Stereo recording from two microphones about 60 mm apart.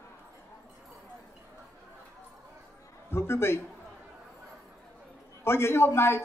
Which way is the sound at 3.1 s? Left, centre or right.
Left.